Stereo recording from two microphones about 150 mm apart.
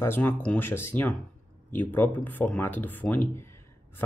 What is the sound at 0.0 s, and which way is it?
Speech, 15° left (ahead or behind).